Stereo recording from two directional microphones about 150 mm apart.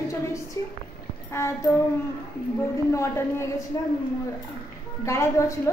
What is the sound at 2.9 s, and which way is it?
Speech, 20° left (ahead or behind).